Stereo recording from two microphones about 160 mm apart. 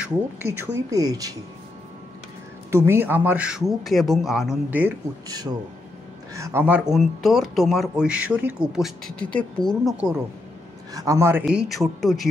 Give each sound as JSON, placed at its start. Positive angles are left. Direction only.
{"t": 0.0, "sound": "speech", "side_deg": -15}
{"t": 2.7, "sound": "speech", "side_deg": -15}
{"t": 5.3, "sound": "speech", "side_deg": -25}
{"t": 9.9, "sound": "speech", "side_deg": -5}
{"t": 10.9, "sound": "a man's voice", "side_deg": -20}
{"t": 11.4, "sound": "speech", "side_deg": 0}